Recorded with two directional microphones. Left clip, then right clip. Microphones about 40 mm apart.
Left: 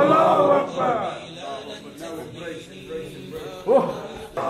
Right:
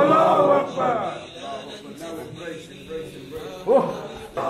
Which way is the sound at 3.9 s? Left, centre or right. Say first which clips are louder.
Even; centre.